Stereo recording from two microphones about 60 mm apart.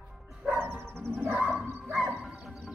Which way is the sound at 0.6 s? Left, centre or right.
Right.